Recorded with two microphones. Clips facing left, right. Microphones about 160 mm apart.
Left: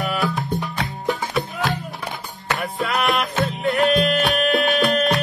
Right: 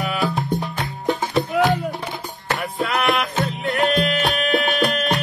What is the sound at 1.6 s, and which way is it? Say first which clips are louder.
Music: right 10 dB; 90° right.